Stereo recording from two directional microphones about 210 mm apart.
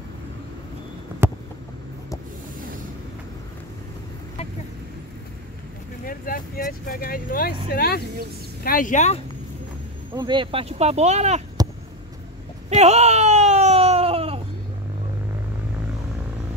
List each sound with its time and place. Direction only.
6.0 s speech: 40° left (ahead or behind)
10.1 s speech: 20° right (ahead or behind)
12.6 s a sound: 30° right (ahead or behind)